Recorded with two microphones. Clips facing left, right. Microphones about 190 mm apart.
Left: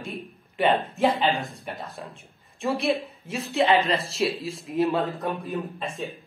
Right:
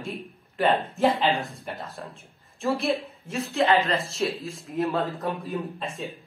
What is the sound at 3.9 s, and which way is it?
Speech, centre (ahead or behind).